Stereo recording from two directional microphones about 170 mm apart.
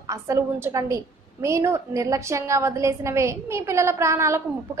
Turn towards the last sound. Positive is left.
turn(degrees=-15)  # may be behind; listen again after turning